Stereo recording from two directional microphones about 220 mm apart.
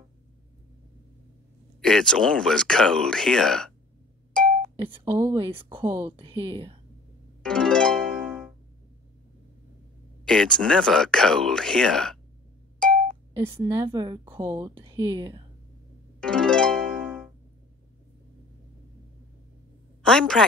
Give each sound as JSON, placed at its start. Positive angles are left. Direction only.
{"t": 1.8, "sound": "speech", "side_deg": 0}
{"t": 4.7, "sound": "a woman's voice", "side_deg": -20}
{"t": 7.4, "sound": "harp", "side_deg": 5}
{"t": 10.2, "sound": "speech", "side_deg": 5}
{"t": 13.3, "sound": "a woman's voice", "side_deg": -15}
{"t": 16.2, "sound": "harp", "side_deg": 5}
{"t": 20.0, "sound": "a woman's voice", "side_deg": 5}